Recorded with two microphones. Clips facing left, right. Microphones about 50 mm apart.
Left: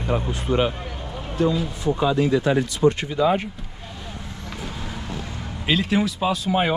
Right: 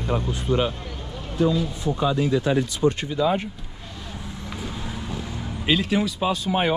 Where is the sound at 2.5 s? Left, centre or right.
Left.